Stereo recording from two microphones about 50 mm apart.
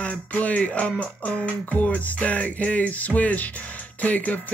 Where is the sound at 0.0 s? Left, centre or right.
Left.